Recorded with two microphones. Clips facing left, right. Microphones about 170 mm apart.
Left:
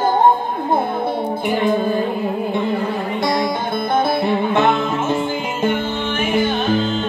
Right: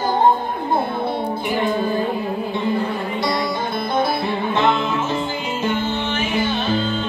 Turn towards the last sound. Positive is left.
turn(degrees=50)  # may be behind; listen again after turning